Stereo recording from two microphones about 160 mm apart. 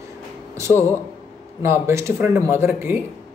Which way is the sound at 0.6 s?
15° right (ahead or behind).